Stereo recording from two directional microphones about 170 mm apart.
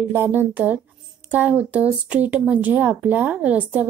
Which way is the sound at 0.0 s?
10° right (ahead or behind).